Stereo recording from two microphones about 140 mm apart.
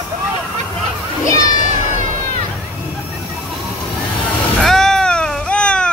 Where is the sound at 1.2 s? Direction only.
25° left (ahead or behind).